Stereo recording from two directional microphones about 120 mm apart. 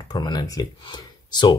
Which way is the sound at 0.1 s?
35° left (ahead or behind).